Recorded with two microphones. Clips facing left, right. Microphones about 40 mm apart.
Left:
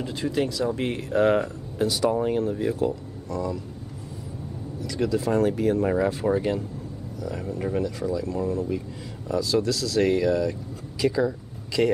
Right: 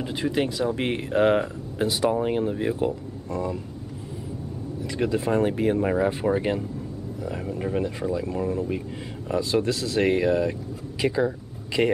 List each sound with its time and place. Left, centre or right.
0.0 s speech: right
4.8 s speech: right